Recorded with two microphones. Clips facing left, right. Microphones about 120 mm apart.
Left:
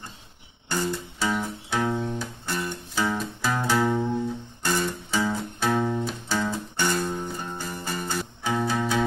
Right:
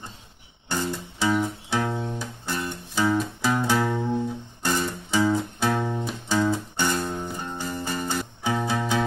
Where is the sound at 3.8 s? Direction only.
5° left (ahead or behind).